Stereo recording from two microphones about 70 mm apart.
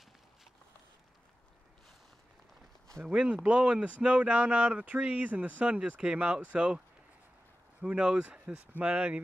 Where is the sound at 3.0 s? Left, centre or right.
Centre.